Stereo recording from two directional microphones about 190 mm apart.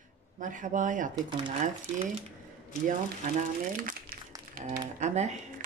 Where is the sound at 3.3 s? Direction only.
45° right (ahead or behind).